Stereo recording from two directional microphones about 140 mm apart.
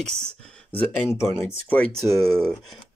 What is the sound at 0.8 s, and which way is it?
Speech, 15° left (ahead or behind).